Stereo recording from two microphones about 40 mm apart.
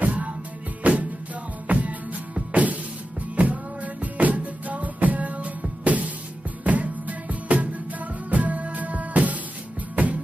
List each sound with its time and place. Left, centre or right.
0.0 s music: right